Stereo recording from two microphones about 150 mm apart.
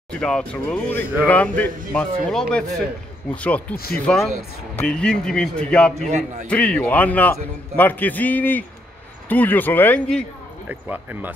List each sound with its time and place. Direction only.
0.1 s a man's voice: 5° left (ahead or behind)
5.9 s a man's voice: 45° right (ahead or behind)
6.4 s a man's voice: 10° left (ahead or behind)
10.7 s speech: 10° right (ahead or behind)